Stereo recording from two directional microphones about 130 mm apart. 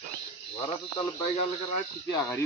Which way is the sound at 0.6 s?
50° left (ahead or behind).